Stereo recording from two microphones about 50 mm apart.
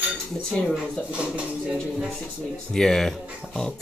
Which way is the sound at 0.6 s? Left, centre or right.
Centre.